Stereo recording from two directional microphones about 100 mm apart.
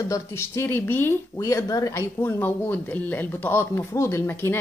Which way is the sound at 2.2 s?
20° left (ahead or behind).